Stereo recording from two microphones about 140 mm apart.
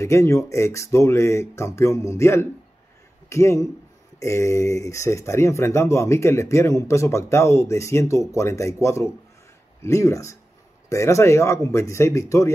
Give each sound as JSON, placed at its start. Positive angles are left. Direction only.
{"t": 0.0, "sound": "a man's voice", "side_deg": 20}